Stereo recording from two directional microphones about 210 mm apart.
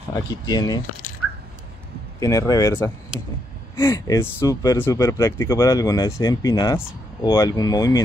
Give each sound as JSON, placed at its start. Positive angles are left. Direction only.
{"t": 0.1, "sound": "speech", "side_deg": 20}
{"t": 2.1, "sound": "speech", "side_deg": 15}